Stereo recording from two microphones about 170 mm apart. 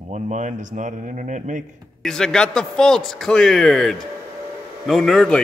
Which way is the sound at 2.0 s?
5° left (ahead or behind).